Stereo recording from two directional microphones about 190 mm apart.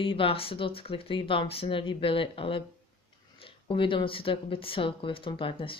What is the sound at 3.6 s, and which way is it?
Speech, 25° left (ahead or behind).